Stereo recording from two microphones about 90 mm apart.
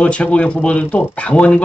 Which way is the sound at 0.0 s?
15° left (ahead or behind).